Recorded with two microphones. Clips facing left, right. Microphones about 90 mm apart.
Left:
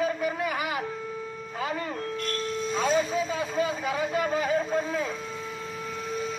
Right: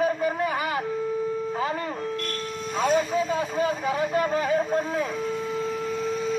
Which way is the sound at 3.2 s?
20° right (ahead or behind).